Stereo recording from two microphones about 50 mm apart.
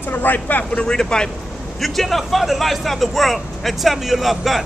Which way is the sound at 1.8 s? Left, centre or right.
Centre.